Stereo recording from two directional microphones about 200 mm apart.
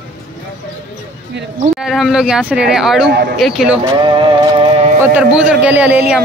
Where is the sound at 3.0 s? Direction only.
55° right (ahead or behind).